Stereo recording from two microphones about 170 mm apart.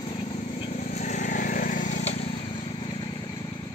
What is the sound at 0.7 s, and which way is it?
Vehicle, 40° left (ahead or behind).